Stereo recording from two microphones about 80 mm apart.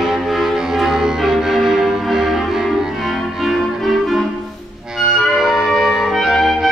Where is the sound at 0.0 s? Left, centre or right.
Centre.